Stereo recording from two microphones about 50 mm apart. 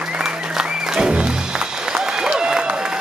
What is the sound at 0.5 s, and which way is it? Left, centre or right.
Music, centre.